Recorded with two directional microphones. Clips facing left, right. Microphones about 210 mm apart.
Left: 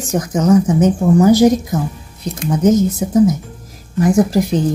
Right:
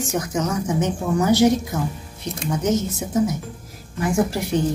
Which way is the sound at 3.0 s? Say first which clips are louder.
Left 8 dB; 35° left (ahead or behind).